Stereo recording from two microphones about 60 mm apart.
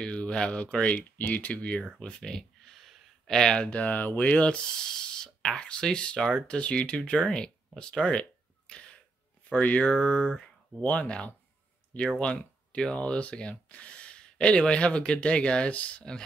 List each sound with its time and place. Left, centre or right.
0.0 s speech: centre